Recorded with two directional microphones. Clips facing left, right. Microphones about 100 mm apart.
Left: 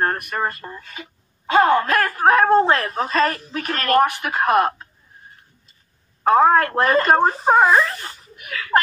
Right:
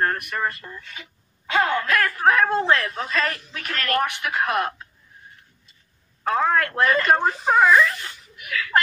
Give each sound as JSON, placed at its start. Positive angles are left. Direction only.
{"t": 0.0, "sound": "speech", "side_deg": 35}
{"t": 6.2, "sound": "speech", "side_deg": 35}